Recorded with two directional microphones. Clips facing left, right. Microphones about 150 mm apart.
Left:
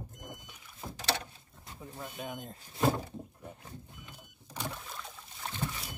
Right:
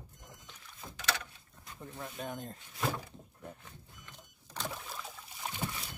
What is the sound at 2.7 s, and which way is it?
Speech, 25° left (ahead or behind).